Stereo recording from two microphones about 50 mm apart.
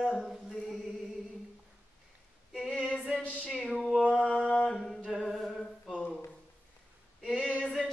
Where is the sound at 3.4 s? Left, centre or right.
Centre.